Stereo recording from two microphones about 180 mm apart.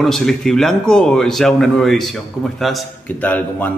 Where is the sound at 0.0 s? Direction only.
Centre (ahead or behind).